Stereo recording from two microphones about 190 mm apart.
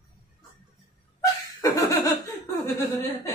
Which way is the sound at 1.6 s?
20° left (ahead or behind).